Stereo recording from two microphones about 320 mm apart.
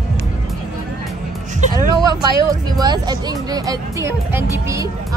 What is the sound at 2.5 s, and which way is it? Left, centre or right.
Speech, centre.